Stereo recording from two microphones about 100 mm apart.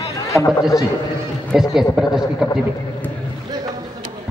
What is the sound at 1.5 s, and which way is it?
Speech, 5° right (ahead or behind).